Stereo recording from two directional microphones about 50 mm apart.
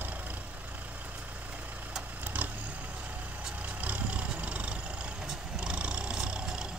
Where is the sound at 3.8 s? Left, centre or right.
Right.